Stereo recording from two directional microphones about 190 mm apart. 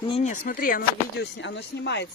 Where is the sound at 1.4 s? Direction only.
65° left (ahead or behind).